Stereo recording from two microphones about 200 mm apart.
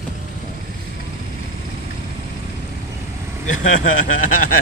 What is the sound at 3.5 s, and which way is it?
Speech, 40° left (ahead or behind).